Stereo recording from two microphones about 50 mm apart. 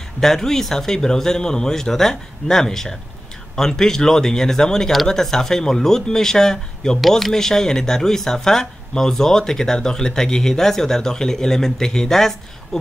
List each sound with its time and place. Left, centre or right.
0.2 s speech: centre